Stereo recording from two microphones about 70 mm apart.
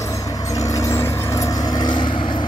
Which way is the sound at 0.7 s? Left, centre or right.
Left.